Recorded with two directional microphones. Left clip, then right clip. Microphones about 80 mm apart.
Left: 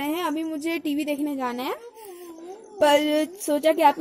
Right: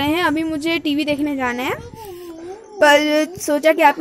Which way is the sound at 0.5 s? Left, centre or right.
Left.